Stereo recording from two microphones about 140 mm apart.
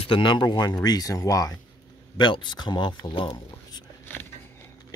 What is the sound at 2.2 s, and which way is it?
Speech, 35° left (ahead or behind).